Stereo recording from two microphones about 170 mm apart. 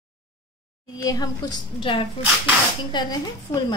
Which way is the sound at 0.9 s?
20° left (ahead or behind).